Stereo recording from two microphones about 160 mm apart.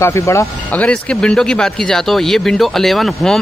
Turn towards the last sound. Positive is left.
turn(degrees=0)  # may be behind; listen again after turning